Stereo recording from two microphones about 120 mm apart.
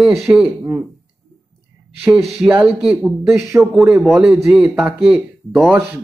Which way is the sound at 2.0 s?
5° right (ahead or behind).